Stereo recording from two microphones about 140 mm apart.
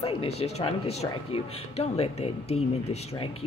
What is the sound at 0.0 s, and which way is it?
Speech, 45° left (ahead or behind).